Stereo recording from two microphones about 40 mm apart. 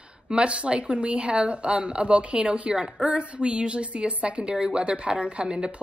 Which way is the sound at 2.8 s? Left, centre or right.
Right.